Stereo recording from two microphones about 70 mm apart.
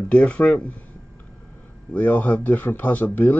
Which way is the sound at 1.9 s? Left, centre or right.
Left.